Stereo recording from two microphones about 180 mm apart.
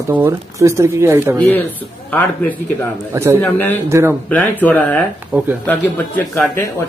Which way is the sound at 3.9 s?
15° right (ahead or behind).